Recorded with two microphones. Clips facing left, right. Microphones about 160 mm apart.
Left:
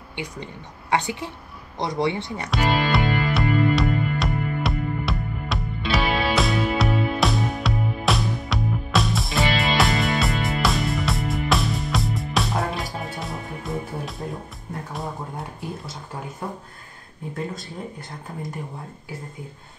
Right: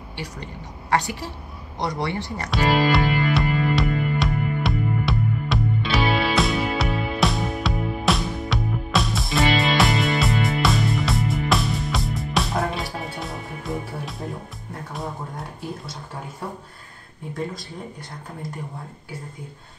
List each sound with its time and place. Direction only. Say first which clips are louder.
0.1 s a woman's voice: left 2 dB; 20° left (ahead or behind)
2.5 s music: right 2 dB; centre (ahead or behind)